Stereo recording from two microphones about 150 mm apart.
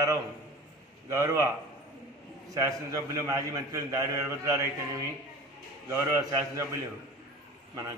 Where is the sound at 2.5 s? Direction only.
25° right (ahead or behind).